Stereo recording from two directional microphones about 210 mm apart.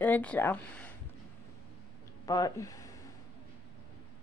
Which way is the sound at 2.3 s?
15° left (ahead or behind).